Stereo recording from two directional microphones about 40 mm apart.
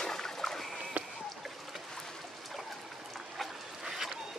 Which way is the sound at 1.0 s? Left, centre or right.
Right.